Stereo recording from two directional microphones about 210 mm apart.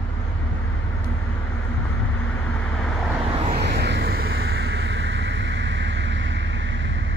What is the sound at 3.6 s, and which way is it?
Vehicle, 50° right (ahead or behind).